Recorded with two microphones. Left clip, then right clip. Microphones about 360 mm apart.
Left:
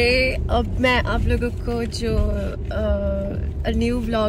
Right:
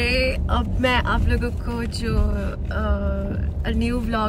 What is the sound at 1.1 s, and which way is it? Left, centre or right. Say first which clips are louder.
Speech: left 1 dB; left.